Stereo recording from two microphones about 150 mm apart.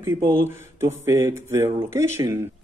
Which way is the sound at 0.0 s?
15° right (ahead or behind).